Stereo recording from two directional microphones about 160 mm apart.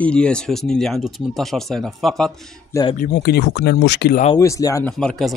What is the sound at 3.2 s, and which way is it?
Speech, 90° left.